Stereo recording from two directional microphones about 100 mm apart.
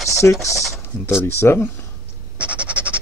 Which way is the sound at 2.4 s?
10° right (ahead or behind).